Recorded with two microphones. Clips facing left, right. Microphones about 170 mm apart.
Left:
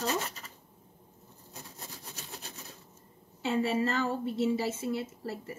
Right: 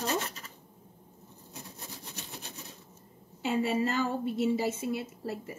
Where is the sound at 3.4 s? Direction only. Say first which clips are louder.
Even; 15° right (ahead or behind).